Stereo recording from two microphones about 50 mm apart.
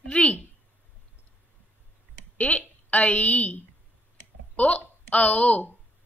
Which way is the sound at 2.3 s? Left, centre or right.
Left.